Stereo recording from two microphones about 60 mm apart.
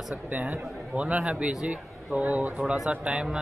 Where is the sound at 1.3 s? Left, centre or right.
Right.